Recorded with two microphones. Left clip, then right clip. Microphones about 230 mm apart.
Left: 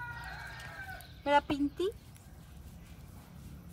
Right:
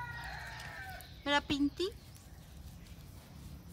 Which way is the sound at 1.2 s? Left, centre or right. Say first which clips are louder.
Left 4 dB; centre.